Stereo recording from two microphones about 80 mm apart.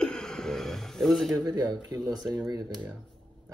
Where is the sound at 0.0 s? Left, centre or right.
Centre.